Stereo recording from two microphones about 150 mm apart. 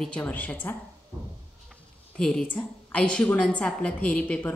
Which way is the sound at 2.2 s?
5° left (ahead or behind).